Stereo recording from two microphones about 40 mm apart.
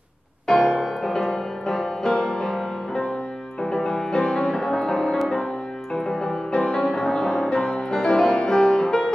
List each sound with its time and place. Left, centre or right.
0.5 s music: left